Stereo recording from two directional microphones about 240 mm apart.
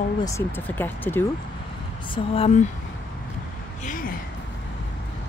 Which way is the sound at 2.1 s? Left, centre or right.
Left.